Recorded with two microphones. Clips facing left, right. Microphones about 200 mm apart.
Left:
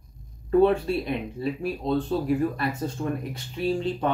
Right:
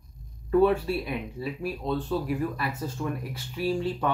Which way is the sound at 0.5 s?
25° left (ahead or behind).